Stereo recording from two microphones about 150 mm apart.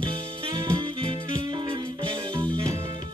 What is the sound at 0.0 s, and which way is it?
Music, 35° right (ahead or behind).